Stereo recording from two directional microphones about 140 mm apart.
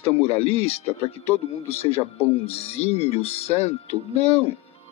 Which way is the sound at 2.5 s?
45° left (ahead or behind).